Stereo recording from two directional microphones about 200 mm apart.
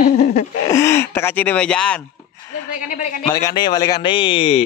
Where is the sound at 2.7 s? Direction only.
40° left (ahead or behind).